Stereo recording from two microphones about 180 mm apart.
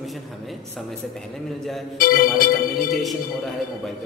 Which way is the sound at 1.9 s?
50° left (ahead or behind).